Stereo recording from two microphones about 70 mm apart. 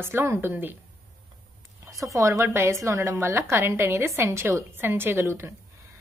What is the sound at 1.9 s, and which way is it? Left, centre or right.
A woman's voice, right.